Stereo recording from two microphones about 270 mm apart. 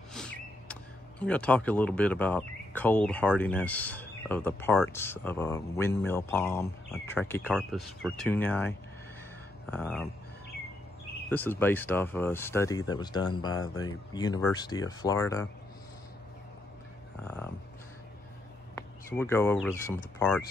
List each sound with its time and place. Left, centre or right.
0.1 s a sound: centre
1.2 s speech: centre
11.2 s speech: centre
19.1 s speech: centre